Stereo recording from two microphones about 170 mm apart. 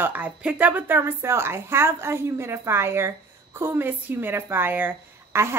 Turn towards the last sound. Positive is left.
turn(degrees=-15)  # may be behind; listen again after turning